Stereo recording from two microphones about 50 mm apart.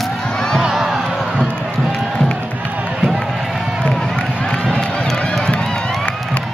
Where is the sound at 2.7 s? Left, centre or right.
Right.